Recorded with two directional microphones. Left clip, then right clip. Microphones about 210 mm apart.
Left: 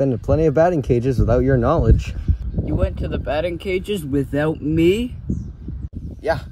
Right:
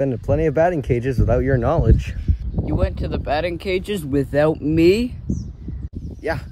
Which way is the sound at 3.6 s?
40° right (ahead or behind).